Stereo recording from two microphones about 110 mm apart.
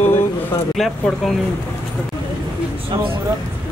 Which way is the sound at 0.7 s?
Centre (ahead or behind).